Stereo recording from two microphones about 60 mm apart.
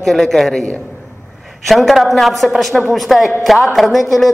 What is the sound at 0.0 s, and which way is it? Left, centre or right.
Speech, centre.